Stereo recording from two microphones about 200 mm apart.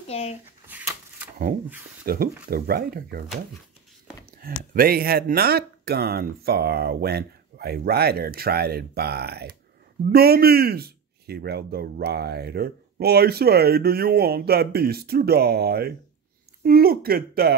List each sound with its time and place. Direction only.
0.1 s speech: 30° left (ahead or behind)
0.7 s a sound: 10° right (ahead or behind)
2.0 s speech: 50° right (ahead or behind)
4.3 s speech: 50° right (ahead or behind)